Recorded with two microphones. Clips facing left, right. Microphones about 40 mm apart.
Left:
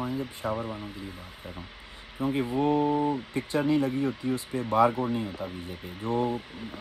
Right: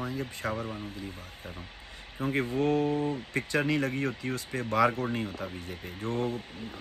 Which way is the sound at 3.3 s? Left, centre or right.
Right.